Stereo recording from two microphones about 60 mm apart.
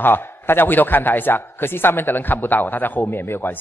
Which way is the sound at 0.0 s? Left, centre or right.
Left.